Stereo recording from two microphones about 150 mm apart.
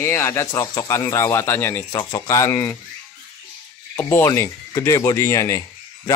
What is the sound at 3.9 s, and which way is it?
Speech, 20° left (ahead or behind).